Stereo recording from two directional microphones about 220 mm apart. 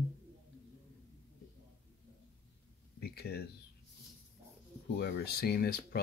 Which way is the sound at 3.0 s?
45° left (ahead or behind).